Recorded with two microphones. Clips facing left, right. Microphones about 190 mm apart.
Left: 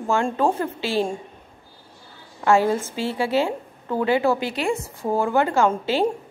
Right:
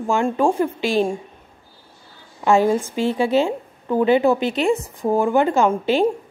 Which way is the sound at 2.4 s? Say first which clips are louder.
Right 2 dB; 15° right (ahead or behind).